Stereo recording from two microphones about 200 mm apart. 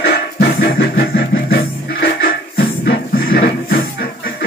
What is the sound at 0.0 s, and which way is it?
Music, 55° left (ahead or behind).